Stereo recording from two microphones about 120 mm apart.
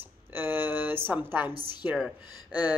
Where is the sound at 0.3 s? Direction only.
20° right (ahead or behind).